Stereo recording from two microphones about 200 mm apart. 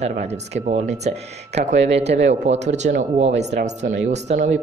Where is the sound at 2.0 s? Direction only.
60° right (ahead or behind).